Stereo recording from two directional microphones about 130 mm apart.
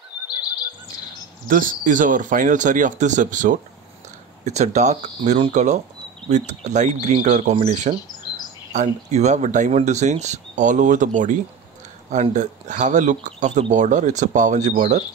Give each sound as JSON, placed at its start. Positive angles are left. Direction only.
{"t": 1.5, "sound": "speech", "side_deg": -90}
{"t": 4.5, "sound": "speech", "side_deg": -65}
{"t": 12.1, "sound": "speech", "side_deg": -65}